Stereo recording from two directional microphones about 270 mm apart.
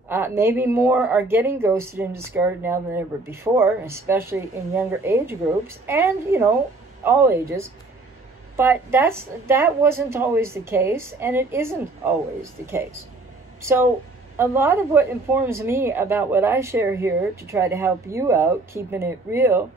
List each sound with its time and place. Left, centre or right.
0.1 s speech: centre
13.6 s a woman's voice: centre